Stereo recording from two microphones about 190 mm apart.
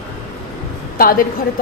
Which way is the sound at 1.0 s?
50° left (ahead or behind).